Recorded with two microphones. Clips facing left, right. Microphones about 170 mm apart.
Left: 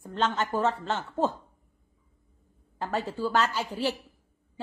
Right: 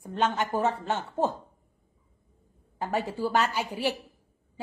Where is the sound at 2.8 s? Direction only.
15° right (ahead or behind).